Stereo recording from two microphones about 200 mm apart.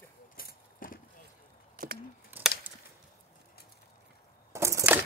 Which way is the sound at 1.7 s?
45° right (ahead or behind).